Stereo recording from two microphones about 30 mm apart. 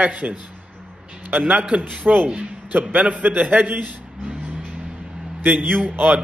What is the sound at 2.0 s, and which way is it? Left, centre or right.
Speech, right.